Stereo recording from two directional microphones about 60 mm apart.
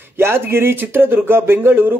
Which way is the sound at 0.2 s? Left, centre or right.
Right.